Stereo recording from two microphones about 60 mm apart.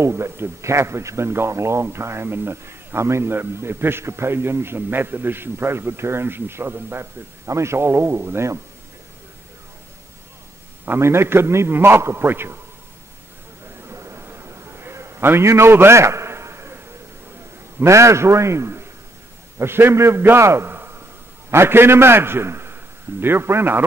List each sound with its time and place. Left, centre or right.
0.0 s a man's voice: right
7.4 s a man's voice: right
10.9 s a man's voice: right
13.8 s a sound: right
17.7 s a man's voice: right